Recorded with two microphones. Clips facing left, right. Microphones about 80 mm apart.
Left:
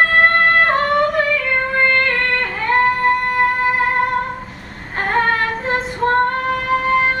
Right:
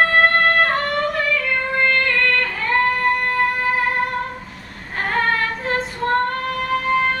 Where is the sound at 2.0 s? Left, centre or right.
Left.